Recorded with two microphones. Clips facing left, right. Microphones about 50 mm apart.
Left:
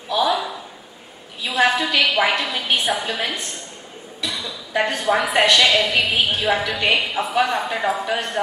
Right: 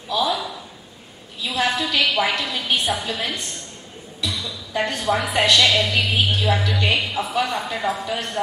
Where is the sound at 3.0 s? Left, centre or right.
Centre.